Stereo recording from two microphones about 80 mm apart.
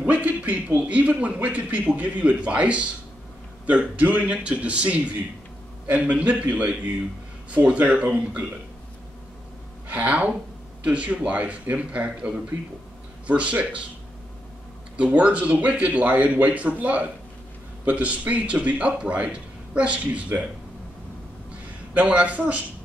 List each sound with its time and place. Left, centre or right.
0.0 s speech: centre
9.8 s a woman's voice: centre
15.0 s speech: centre
21.9 s speech: centre